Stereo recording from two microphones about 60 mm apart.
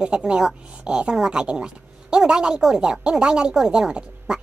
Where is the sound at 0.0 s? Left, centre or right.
Centre.